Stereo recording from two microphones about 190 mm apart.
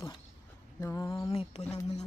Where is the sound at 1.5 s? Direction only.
30° left (ahead or behind).